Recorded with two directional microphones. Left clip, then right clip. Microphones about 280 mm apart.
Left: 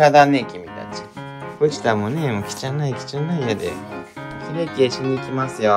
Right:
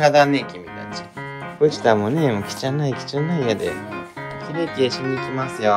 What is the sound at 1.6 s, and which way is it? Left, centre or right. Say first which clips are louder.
Speech: right 2 dB; centre.